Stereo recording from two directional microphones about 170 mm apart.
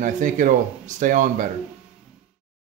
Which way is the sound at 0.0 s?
50° right (ahead or behind).